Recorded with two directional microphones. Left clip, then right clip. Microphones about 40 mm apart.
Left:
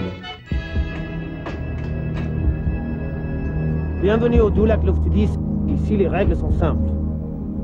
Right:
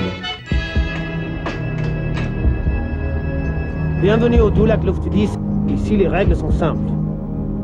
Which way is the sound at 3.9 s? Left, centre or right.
Left.